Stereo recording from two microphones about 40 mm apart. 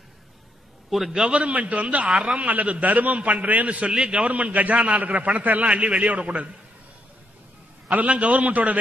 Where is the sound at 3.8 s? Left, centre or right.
Right.